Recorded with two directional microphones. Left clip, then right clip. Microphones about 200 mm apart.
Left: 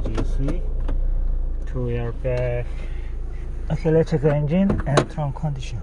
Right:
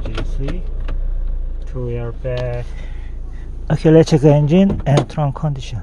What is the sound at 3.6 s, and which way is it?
Speech, 50° right (ahead or behind).